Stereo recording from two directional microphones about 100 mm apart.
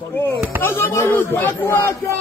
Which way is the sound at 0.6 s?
20° left (ahead or behind).